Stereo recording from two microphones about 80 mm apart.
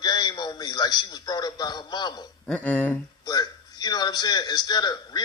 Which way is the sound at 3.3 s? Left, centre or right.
Left.